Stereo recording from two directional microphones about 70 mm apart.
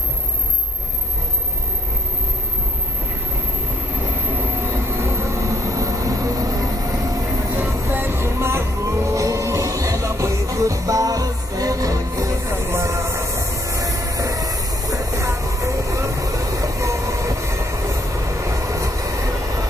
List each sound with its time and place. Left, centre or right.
4.8 s vehicle: right
7.9 s music: right